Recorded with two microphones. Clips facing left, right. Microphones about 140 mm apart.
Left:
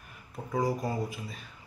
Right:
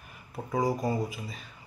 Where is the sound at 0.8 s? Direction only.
Centre (ahead or behind).